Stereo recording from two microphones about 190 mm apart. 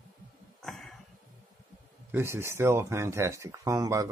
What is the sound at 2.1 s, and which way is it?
Speech, 15° right (ahead or behind).